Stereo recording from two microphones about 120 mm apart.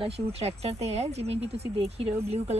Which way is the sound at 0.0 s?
55° right (ahead or behind).